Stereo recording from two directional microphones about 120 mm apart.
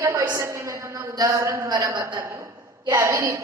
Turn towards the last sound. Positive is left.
turn(degrees=-25)  # may be behind; listen again after turning